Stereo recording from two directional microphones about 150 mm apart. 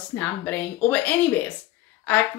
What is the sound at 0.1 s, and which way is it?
Speech, 10° left (ahead or behind).